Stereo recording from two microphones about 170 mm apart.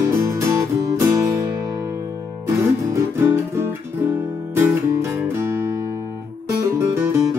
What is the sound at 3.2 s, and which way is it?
Guitar, 15° right (ahead or behind).